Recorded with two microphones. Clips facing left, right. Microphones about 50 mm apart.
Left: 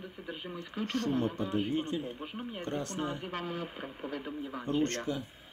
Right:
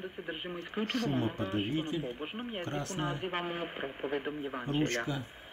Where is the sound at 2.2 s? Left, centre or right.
Right.